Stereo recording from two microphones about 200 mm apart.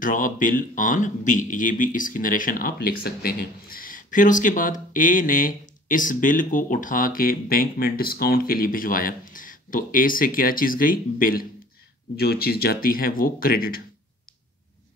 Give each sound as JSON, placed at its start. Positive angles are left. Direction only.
{"t": 0.0, "sound": "speech", "side_deg": 40}